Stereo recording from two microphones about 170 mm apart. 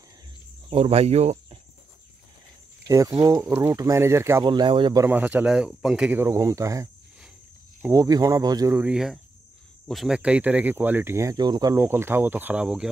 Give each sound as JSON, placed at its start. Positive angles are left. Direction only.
{"t": 0.7, "sound": "speech", "side_deg": -35}
{"t": 3.2, "sound": "speech", "side_deg": -20}
{"t": 4.5, "sound": "speech", "side_deg": -30}
{"t": 5.0, "sound": "speech", "side_deg": -10}
{"t": 6.2, "sound": "speech", "side_deg": -20}
{"t": 8.7, "sound": "speech", "side_deg": -5}